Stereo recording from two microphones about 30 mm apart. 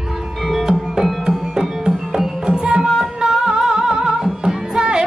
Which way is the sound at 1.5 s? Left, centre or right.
Right.